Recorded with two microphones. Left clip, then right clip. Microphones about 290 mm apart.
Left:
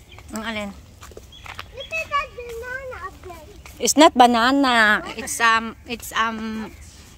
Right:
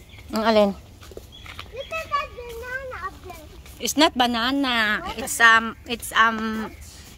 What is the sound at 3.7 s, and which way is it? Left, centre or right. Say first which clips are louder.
Speech: left 6 dB; centre.